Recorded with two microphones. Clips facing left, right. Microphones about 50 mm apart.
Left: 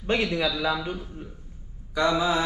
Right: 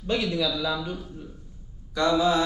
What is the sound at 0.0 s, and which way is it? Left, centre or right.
Speech, left.